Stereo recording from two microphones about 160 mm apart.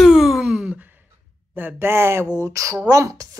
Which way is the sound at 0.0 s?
Centre (ahead or behind).